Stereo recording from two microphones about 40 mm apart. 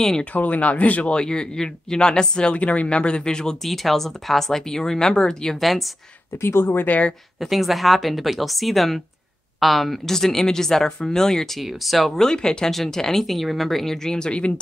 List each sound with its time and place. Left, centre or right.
0.2 s speech: left
1.1 s speech: centre
2.6 s speech: left
3.6 s speech: centre
5.6 s speech: centre
6.4 s speech: left
7.3 s speech: centre
11.6 s speech: centre
12.3 s speech: centre